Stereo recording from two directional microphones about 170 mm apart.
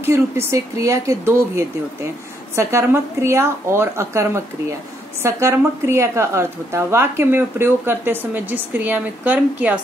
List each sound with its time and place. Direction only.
0.0 s a woman's voice: 15° right (ahead or behind)